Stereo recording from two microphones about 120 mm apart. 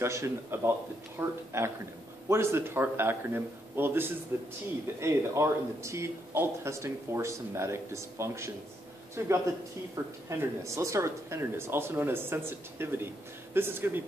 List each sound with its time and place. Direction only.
0.0 s speech: 25° right (ahead or behind)